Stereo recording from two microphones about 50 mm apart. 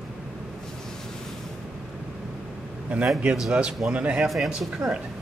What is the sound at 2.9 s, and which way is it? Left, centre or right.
Speech, right.